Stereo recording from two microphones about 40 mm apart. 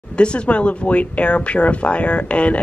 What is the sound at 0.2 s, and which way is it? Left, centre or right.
Speech, left.